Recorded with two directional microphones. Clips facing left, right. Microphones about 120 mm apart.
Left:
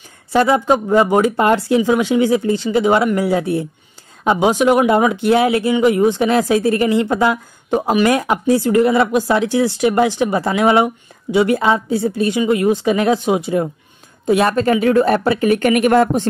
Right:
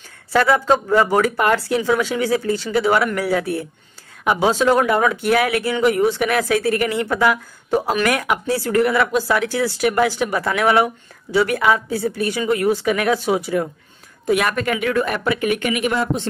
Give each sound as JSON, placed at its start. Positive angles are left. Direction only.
{"t": 0.3, "sound": "a woman's voice", "side_deg": 20}